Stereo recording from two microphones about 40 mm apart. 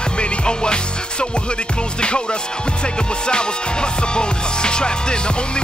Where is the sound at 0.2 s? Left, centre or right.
Left.